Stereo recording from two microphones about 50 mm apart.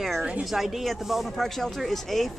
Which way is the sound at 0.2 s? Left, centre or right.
Centre.